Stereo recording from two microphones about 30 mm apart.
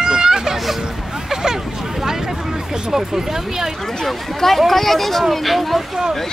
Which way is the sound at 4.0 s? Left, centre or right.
Centre.